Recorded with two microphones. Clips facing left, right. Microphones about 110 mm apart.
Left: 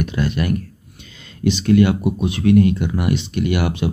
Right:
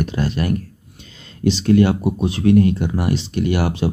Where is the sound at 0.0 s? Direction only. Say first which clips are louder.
Even; 35° right (ahead or behind).